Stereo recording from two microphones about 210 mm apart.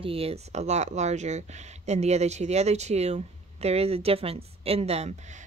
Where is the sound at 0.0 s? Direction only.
25° right (ahead or behind).